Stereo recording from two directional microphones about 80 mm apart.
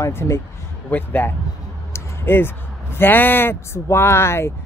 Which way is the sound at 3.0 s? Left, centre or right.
Left.